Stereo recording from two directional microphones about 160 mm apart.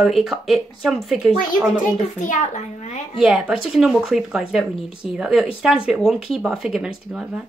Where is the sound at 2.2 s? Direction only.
50° left (ahead or behind).